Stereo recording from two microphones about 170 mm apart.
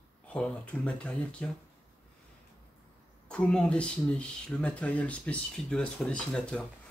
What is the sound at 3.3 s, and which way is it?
Speech, 5° left (ahead or behind).